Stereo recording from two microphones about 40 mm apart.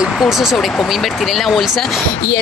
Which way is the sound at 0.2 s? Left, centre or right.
Centre.